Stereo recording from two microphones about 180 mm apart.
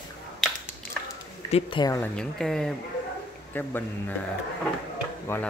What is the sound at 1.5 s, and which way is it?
Speech, 25° left (ahead or behind).